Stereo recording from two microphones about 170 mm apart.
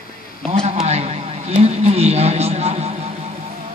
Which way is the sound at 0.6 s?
35° right (ahead or behind).